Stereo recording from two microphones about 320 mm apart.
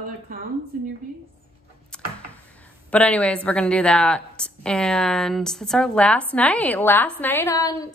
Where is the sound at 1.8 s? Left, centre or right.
Centre.